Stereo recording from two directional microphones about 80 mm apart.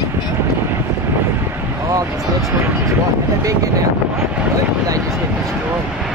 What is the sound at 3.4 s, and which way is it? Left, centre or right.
Speech, right.